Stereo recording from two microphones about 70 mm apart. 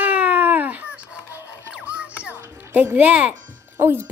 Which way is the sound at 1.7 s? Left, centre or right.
Centre.